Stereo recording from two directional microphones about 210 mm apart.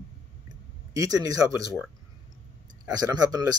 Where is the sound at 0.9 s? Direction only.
15° right (ahead or behind).